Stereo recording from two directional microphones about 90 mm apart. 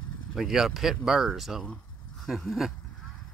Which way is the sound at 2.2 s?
Centre (ahead or behind).